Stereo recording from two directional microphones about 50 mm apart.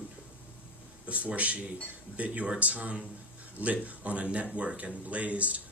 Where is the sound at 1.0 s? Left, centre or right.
Right.